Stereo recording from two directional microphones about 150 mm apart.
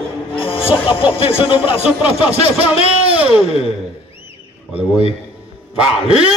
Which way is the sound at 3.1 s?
5° right (ahead or behind).